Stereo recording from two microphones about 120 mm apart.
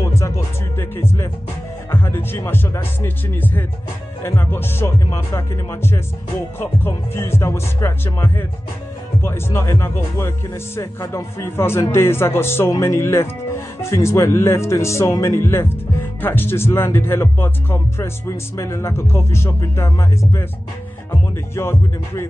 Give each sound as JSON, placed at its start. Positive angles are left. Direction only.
{"t": 0.0, "sound": "music", "side_deg": 25}
{"t": 0.7, "sound": "speech", "side_deg": 20}